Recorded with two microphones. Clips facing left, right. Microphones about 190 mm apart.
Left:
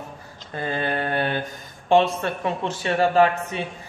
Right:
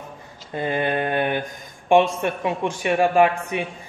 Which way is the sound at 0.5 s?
20° right (ahead or behind).